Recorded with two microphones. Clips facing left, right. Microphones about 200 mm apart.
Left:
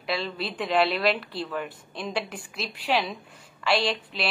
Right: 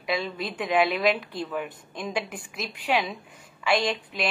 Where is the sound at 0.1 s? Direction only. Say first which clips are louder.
Right 1 dB; centre (ahead or behind).